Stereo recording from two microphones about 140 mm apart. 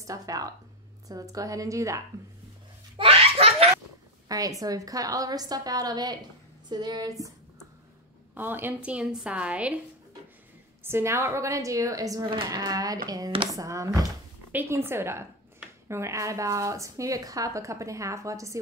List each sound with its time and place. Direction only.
0.0 s a woman's voice: 25° right (ahead or behind)
3.0 s laughter: 45° right (ahead or behind)
4.3 s a woman's voice: 25° right (ahead or behind)
8.4 s a woman's voice: 15° right (ahead or behind)
10.8 s a woman's voice: 15° right (ahead or behind)